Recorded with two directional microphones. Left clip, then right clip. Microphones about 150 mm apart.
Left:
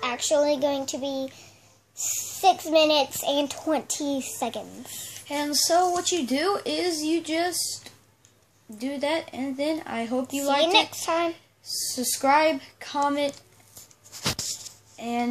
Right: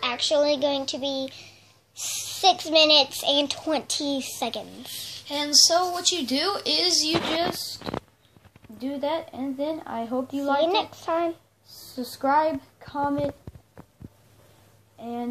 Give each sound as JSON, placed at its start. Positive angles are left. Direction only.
{"t": 0.0, "sound": "a child's voice", "side_deg": 10}
{"t": 5.3, "sound": "a woman's voice", "side_deg": 30}
{"t": 8.7, "sound": "speech", "side_deg": 45}
{"t": 10.6, "sound": "a woman's voice", "side_deg": 5}
{"t": 11.9, "sound": "a woman's voice", "side_deg": 45}
{"t": 15.0, "sound": "speech", "side_deg": 45}